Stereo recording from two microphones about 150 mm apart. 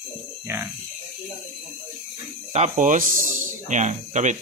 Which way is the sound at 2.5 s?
50° right (ahead or behind).